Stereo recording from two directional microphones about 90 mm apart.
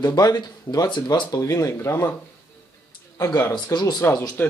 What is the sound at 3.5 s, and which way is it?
Speech, 50° left (ahead or behind).